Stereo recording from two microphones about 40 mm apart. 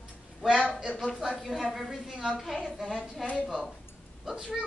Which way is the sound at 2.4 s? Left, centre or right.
Centre.